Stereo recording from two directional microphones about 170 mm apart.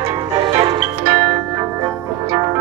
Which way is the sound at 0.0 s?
30° right (ahead or behind).